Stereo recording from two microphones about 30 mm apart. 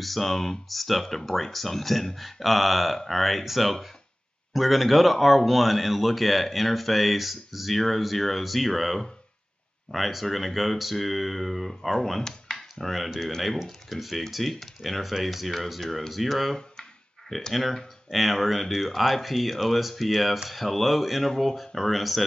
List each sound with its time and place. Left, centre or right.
0.0 s speech: centre
12.7 s speech: centre
17.3 s speech: centre
18.1 s speech: centre